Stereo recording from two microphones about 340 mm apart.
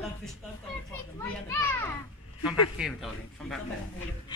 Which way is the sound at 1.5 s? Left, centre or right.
Centre.